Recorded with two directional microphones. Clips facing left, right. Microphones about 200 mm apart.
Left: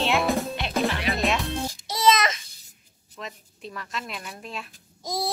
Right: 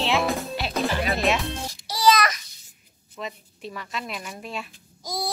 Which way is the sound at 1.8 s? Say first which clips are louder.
Right 2 dB; 20° left (ahead or behind).